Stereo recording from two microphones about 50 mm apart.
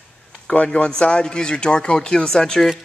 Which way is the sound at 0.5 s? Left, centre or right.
Left.